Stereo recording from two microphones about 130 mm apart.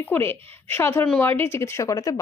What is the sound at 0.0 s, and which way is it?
A woman's voice, 15° left (ahead or behind).